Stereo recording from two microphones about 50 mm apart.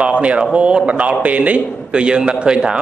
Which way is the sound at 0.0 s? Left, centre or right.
Right.